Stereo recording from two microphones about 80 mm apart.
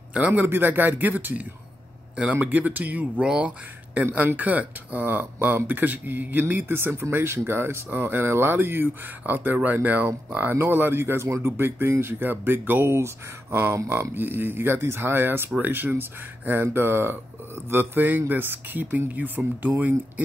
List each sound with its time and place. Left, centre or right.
0.1 s speech: centre